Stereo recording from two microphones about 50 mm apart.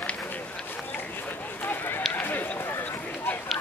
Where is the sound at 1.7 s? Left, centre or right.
Left.